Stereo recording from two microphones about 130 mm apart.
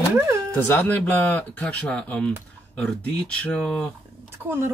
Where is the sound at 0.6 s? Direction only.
15° left (ahead or behind).